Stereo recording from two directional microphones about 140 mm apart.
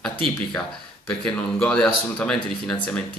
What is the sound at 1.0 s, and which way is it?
Speech, 5° left (ahead or behind).